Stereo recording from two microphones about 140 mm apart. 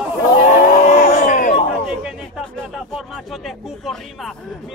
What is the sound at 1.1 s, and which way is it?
Speech, 85° left.